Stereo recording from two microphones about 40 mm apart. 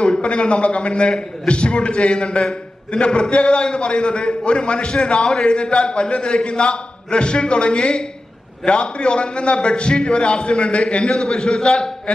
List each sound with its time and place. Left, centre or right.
0.0 s a man's voice: left